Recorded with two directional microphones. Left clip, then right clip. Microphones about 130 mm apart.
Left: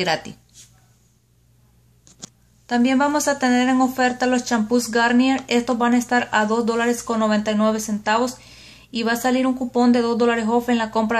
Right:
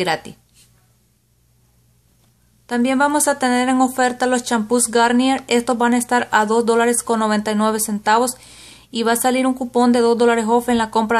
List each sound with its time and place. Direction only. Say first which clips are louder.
0.0 s speech: right 1 dB; 25° right (ahead or behind)
2.6 s speech: right 2 dB; 30° right (ahead or behind)